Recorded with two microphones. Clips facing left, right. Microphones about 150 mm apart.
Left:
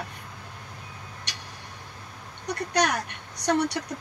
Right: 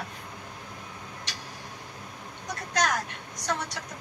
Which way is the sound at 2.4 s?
65° left (ahead or behind).